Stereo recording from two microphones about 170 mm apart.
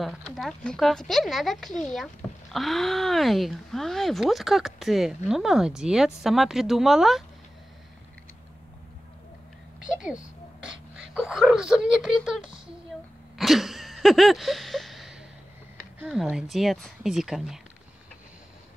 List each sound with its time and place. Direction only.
0.0 s speech: centre (ahead or behind)
10.6 s wail: 5° right (ahead or behind)
13.4 s a sound: centre (ahead or behind)
16.0 s speech: 5° right (ahead or behind)